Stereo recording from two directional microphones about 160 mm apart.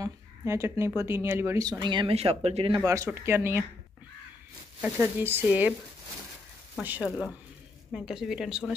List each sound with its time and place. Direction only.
0.0 s speech: 15° right (ahead or behind); by 2.8 s 35° right (ahead or behind)
2.8 s speech: 20° right (ahead or behind)
4.8 s speech: 15° right (ahead or behind)
6.8 s a woman's voice: 10° right (ahead or behind)